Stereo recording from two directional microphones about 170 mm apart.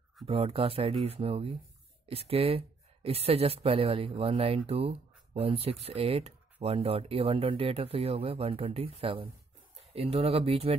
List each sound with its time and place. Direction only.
0.3 s speech: 35° right (ahead or behind)